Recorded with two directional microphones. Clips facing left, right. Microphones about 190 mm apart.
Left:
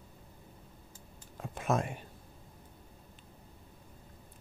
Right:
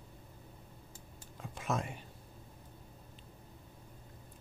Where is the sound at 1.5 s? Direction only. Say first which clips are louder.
Left 5 dB; 55° left (ahead or behind).